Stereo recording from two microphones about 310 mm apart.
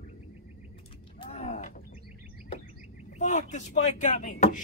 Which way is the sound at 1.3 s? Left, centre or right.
Left.